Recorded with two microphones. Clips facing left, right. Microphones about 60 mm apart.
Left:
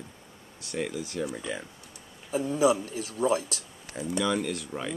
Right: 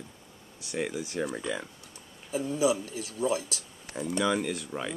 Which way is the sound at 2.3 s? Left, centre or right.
Left.